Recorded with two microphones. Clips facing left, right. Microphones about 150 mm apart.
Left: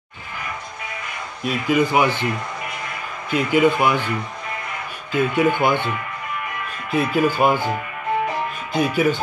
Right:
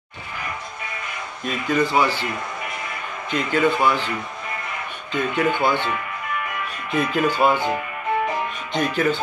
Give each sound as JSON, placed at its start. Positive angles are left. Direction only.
{"t": 1.4, "sound": "speech", "side_deg": 10}
{"t": 3.3, "sound": "speech", "side_deg": 10}
{"t": 5.1, "sound": "speech", "side_deg": 10}
{"t": 6.9, "sound": "speech", "side_deg": 5}
{"t": 8.7, "sound": "speech", "side_deg": 10}